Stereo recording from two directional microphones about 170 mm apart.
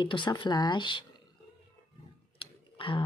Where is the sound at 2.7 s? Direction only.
30° left (ahead or behind).